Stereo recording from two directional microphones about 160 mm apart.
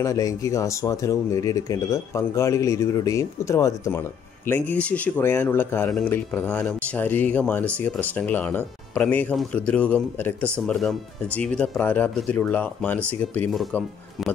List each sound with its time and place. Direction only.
0.0 s speech: 20° left (ahead or behind)
5.9 s speech: 5° left (ahead or behind)